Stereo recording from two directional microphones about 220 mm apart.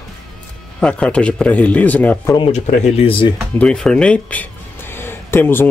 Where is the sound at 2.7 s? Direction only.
30° left (ahead or behind).